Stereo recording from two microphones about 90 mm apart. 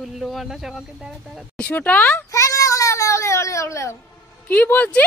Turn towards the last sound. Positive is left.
turn(degrees=20)  # may be behind; listen again after turning